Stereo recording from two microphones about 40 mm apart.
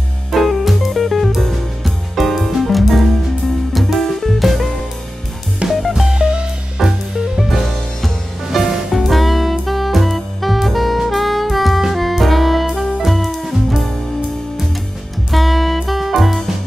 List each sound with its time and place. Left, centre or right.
0.3 s music: centre
5.7 s music: centre
6.0 s music: centre
6.8 s music: centre
11.8 s jazz: centre
15.3 s music: centre